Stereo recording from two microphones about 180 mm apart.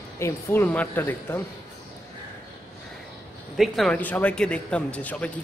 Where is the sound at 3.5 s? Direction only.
Centre (ahead or behind).